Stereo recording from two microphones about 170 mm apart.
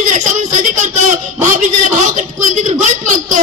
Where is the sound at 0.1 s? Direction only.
45° right (ahead or behind).